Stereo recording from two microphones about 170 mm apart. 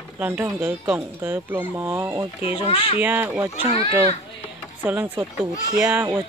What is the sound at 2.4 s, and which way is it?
Speech, 35° left (ahead or behind).